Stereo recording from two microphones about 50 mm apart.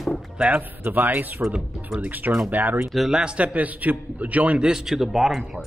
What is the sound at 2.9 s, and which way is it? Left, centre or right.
Speech, centre.